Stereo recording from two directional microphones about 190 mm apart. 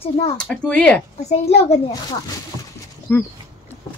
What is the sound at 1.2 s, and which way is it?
Speech, 35° left (ahead or behind).